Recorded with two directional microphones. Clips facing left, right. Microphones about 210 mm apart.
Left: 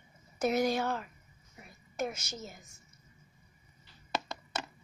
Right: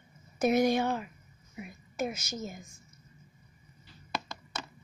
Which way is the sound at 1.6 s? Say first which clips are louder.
Right 2 dB; 10° right (ahead or behind).